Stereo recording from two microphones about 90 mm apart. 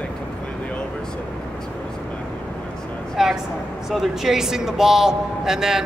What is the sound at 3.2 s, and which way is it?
Speech, 5° right (ahead or behind).